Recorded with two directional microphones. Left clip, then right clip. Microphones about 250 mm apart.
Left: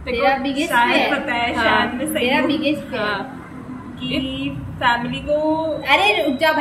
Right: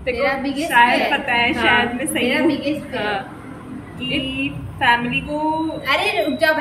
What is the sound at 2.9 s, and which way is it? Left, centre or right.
Speech, centre.